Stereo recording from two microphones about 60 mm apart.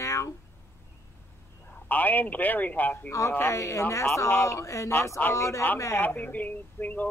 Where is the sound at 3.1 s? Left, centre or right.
Left.